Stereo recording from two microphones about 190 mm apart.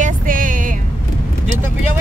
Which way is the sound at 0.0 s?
45° right (ahead or behind).